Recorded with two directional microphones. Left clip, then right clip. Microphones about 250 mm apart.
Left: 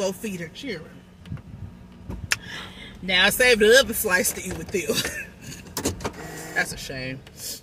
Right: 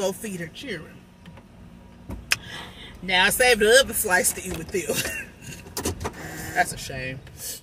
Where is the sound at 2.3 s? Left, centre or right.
Centre.